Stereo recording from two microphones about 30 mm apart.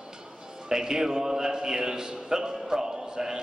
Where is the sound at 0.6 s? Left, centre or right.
Right.